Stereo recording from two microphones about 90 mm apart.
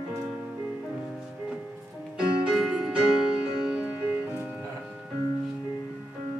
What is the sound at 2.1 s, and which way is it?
Music, 5° right (ahead or behind).